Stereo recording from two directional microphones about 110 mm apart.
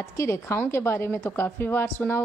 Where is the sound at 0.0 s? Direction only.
25° left (ahead or behind).